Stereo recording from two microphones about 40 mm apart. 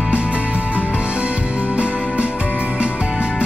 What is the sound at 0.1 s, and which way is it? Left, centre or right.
Music, right.